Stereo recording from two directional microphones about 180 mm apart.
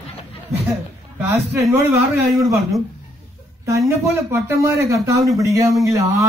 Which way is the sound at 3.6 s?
15° right (ahead or behind).